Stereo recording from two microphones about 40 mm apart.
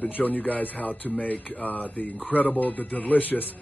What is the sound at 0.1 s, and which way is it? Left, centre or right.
Speech, left.